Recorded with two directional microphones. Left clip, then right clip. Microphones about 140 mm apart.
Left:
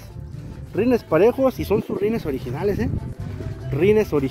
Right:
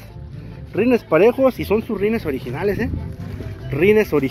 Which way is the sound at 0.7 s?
15° left (ahead or behind).